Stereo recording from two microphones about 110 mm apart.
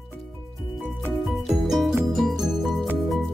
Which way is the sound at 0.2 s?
Centre (ahead or behind).